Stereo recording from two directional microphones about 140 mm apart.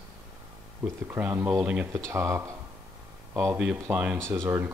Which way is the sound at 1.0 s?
15° right (ahead or behind).